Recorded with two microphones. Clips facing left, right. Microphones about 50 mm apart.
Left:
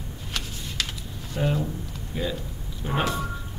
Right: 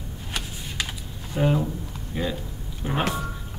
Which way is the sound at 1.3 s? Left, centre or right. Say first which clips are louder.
Right 3 dB; centre.